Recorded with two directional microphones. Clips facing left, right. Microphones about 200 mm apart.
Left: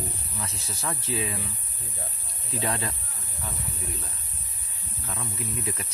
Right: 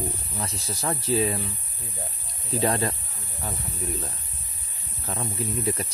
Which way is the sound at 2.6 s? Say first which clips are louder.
Right 6 dB; 40° right (ahead or behind).